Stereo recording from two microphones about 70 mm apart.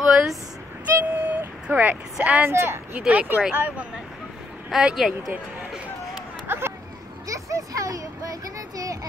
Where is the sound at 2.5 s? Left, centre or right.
Right.